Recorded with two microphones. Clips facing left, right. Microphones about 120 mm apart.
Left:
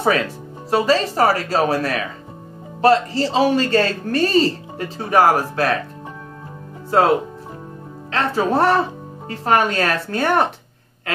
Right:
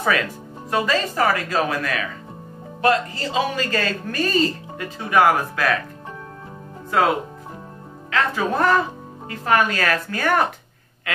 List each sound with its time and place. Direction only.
0.7 s speech: 30° left (ahead or behind)
8.1 s speech: 30° left (ahead or behind)